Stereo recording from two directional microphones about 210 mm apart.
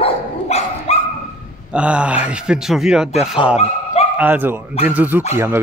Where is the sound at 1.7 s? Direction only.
5° right (ahead or behind).